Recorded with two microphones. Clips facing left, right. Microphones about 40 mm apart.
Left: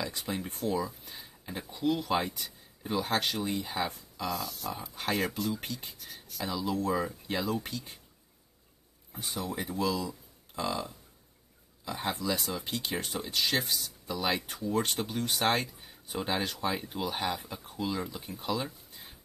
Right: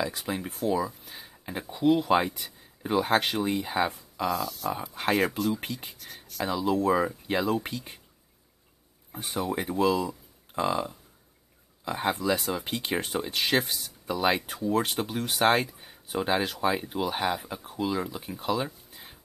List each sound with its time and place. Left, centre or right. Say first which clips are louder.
0.0 s speech: right 4 dB; centre
1.4 s speech: right 6 dB; right
4.4 s speech: right 5 dB; centre
4.6 s speech: right 6 dB; right
9.2 s speech: right 5 dB; right; by 19.1 s centre